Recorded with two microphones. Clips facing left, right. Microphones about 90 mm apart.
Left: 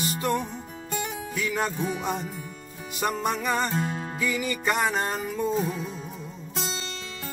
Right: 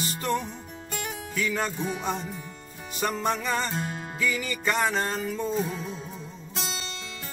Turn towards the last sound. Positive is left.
turn(degrees=25)  # may be behind; listen again after turning